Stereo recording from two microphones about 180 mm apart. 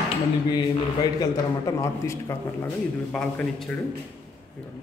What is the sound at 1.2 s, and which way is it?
Speech, 15° left (ahead or behind).